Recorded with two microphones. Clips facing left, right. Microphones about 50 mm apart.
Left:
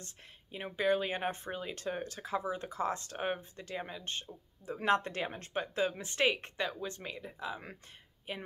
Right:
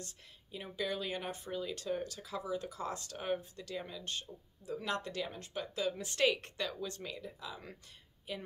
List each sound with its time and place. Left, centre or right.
0.0 s speech: left
6.0 s speech: left